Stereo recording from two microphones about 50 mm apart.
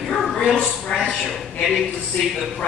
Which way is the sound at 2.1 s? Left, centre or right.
Left.